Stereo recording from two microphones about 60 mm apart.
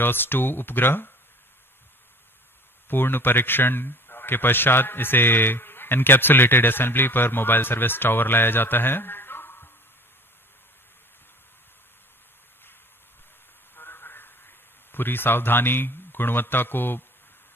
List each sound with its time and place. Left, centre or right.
0.0 s a man's voice: left
2.9 s a man's voice: left
13.7 s a sound: left